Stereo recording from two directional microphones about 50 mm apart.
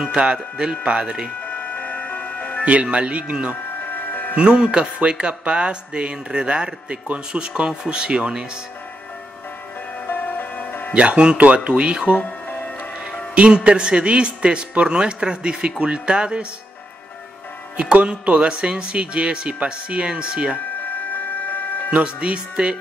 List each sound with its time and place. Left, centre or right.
0.1 s speech: right
1.4 s music: left
2.6 s speech: right
3.8 s music: left
4.4 s speech: centre
10.0 s music: left
10.9 s speech: right
12.2 s music: left
13.3 s speech: right
17.7 s speech: right
21.4 s a sound: left
21.9 s speech: right